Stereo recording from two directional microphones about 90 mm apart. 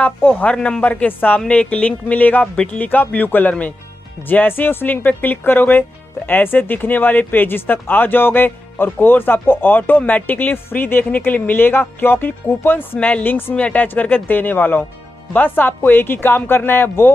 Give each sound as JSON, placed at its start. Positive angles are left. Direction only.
{"t": 0.0, "sound": "speech", "side_deg": 20}